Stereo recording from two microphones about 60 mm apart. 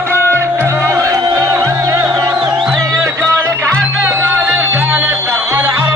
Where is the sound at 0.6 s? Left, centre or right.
Right.